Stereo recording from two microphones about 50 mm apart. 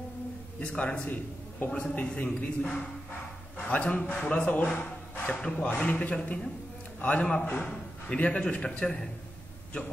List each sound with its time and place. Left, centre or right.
0.6 s a man's voice: left
1.0 s a man's voice: left; by 9.1 s centre